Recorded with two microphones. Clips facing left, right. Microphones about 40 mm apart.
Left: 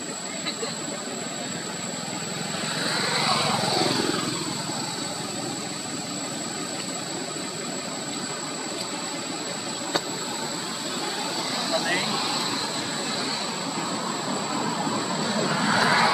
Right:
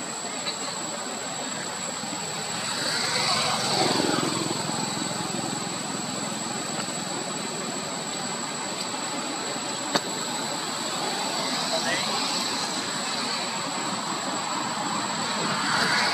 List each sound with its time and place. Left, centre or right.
2.9 s vehicle: centre
3.8 s vehicle: centre
14.5 s vehicle: centre
15.5 s vehicle: centre